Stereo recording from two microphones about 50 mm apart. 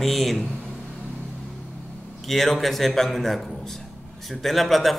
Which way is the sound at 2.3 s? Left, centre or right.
Centre.